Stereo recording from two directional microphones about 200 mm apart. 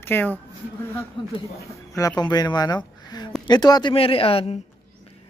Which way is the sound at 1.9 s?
15° left (ahead or behind).